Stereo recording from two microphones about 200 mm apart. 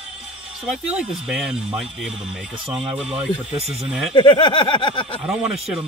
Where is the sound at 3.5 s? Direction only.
30° right (ahead or behind).